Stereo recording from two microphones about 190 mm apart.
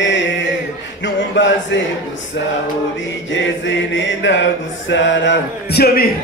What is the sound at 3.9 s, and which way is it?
Music, 70° left (ahead or behind).